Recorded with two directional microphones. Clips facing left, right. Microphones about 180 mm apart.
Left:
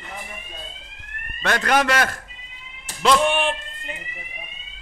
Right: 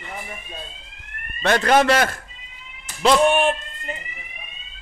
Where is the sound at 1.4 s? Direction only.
25° right (ahead or behind).